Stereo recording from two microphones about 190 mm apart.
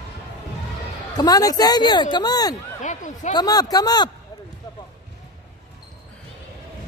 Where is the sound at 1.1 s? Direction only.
20° left (ahead or behind).